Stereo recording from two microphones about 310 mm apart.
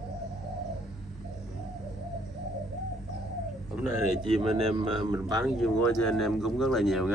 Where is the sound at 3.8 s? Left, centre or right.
Centre.